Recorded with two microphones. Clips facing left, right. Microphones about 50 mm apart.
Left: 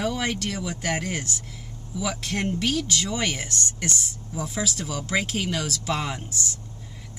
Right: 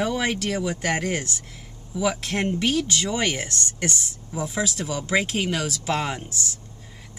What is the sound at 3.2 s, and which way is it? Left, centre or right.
Speech, centre.